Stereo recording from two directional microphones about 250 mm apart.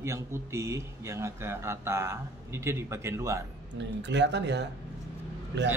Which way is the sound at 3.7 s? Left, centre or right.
Right.